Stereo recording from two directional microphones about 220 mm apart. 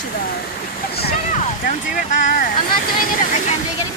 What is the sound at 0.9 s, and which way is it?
Speech, 40° left (ahead or behind).